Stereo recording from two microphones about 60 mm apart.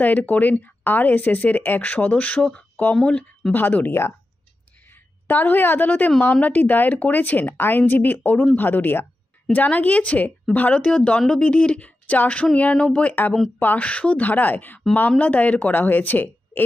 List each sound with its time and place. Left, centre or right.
0.0 s speech: left
3.5 s speech: left
5.3 s speech: left